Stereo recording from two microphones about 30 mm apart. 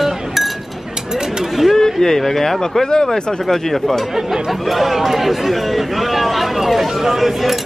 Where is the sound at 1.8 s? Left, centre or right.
Centre.